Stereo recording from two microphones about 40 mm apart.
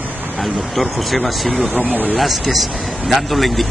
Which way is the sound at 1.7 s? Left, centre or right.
Right.